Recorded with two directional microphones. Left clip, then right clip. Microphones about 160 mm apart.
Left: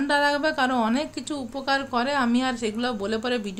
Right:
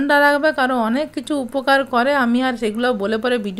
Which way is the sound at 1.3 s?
40° right (ahead or behind).